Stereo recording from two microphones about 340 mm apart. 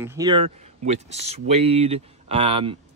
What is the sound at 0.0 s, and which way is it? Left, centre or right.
A man's voice, centre.